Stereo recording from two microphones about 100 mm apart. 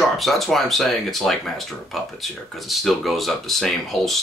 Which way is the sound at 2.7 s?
Centre (ahead or behind).